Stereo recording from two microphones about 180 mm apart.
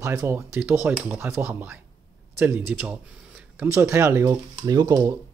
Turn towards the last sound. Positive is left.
turn(degrees=-20)  # may be behind; listen again after turning